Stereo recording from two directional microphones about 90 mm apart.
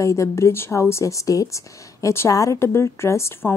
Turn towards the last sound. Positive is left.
turn(degrees=30)  # may be behind; listen again after turning